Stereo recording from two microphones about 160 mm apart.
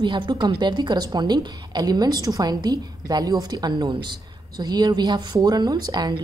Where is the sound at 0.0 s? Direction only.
30° right (ahead or behind).